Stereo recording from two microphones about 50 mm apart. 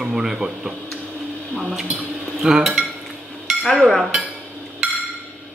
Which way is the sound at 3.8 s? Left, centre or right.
Centre.